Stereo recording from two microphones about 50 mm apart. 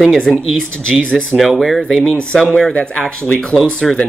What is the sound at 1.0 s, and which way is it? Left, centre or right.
Speech, left.